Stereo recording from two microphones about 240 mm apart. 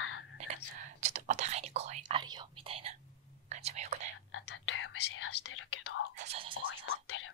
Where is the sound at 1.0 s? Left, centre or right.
Right.